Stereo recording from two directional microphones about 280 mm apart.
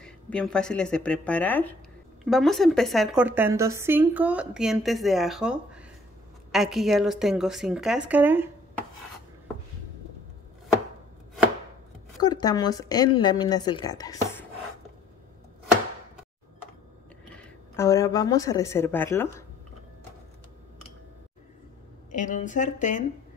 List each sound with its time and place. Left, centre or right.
0.0 s a woman's voice: centre
12.2 s speech: centre
17.3 s speech: centre
22.1 s speech: left